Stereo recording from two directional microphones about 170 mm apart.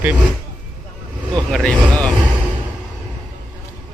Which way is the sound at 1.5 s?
5° left (ahead or behind).